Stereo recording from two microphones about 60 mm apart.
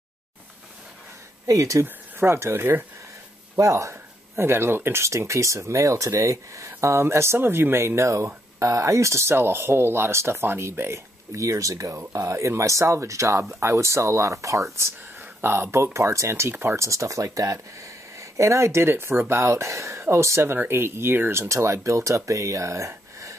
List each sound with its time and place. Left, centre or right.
1.5 s speech: right
2.1 s speech: right
3.5 s speech: right
3.9 s speech: right
6.8 s speech: right
11.3 s speech: right
15.1 s speech: right
16.8 s speech: right
20.5 s speech: right